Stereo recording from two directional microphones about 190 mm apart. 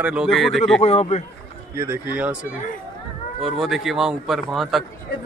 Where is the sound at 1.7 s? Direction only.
15° right (ahead or behind).